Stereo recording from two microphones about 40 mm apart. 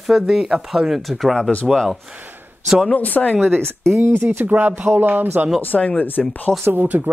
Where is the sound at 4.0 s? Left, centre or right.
Right.